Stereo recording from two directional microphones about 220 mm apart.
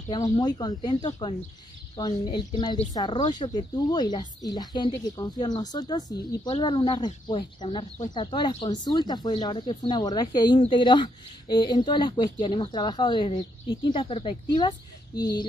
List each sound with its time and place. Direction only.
0.1 s speech: 20° left (ahead or behind)